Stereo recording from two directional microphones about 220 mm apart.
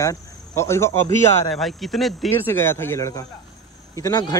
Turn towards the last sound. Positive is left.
turn(degrees=15)  # may be behind; listen again after turning